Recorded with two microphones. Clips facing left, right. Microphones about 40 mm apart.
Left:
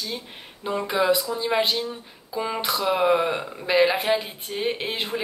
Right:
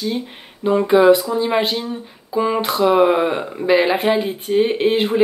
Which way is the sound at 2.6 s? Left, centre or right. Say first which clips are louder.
Right 6 dB; right.